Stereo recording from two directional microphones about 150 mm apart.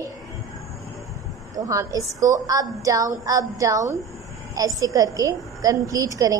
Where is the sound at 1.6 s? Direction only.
20° right (ahead or behind).